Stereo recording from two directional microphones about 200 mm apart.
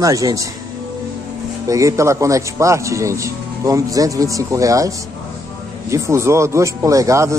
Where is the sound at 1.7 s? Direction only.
15° right (ahead or behind).